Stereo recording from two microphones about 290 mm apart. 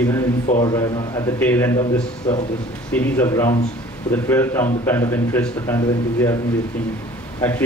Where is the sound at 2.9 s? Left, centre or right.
Centre.